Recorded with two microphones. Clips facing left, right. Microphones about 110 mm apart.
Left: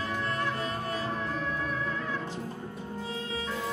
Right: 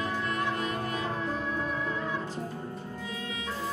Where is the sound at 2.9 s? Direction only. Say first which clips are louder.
Left 2 dB; 30° left (ahead or behind).